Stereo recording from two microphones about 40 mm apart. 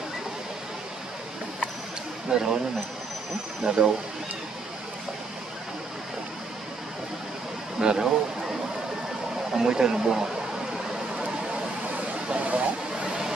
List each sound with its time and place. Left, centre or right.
2.2 s speech: centre
3.6 s speech: centre
7.8 s speech: centre
9.5 s a sound: centre
9.8 s speech: centre
11.9 s a sound: right